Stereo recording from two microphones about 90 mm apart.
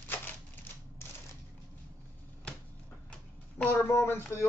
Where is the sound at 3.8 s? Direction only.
25° left (ahead or behind).